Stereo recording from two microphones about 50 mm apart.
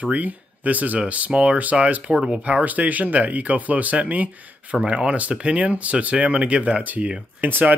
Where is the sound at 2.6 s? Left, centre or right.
Right.